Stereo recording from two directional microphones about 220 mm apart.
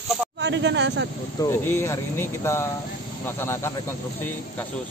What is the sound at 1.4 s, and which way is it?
Speech, 10° left (ahead or behind).